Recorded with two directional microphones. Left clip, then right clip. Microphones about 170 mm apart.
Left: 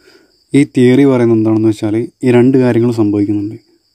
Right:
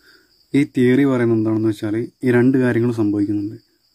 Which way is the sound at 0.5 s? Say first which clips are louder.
Left 7 dB; 25° left (ahead or behind).